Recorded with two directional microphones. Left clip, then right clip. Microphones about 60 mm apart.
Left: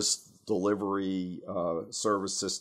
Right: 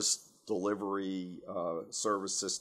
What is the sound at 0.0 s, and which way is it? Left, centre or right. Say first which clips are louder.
Speech: left 3 dB; left.